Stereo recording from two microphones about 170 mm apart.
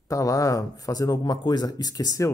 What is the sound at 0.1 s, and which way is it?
Speech, 20° left (ahead or behind).